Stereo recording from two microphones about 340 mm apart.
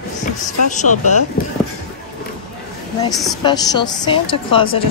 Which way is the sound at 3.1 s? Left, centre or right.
Centre.